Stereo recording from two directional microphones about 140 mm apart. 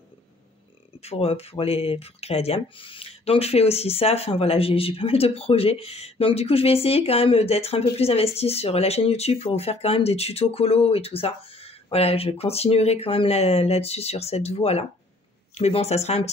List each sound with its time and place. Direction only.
1.0 s speech: 45° left (ahead or behind)